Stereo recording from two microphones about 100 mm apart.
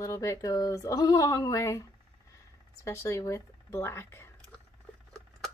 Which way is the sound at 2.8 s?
30° left (ahead or behind).